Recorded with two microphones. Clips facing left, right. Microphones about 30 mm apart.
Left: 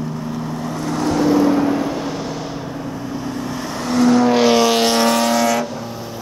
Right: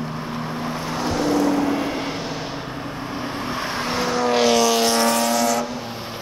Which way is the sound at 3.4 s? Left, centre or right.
Right.